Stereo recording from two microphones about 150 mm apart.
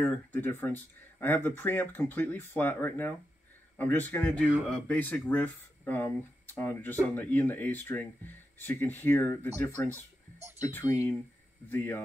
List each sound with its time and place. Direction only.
0.0 s speech: 15° left (ahead or behind)
10.6 s speech: 20° left (ahead or behind)